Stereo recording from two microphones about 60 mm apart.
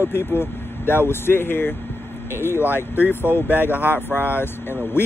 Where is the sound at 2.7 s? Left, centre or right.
Left.